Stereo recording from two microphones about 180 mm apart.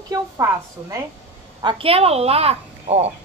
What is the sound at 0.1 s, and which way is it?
Speech, 15° right (ahead or behind).